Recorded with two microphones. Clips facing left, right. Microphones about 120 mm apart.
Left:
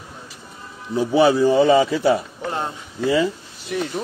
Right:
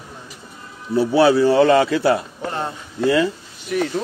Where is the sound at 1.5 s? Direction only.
70° right (ahead or behind).